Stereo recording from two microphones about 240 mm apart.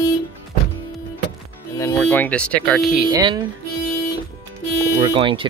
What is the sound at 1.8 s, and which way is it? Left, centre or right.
Speech, centre.